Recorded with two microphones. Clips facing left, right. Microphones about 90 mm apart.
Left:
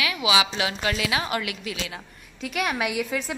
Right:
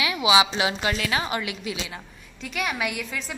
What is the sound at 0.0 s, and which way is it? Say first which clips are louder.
Speech: right 3 dB; 25° right (ahead or behind).